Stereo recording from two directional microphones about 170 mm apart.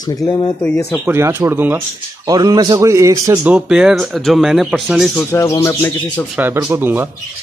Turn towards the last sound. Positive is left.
turn(degrees=-10)  # may be behind; listen again after turning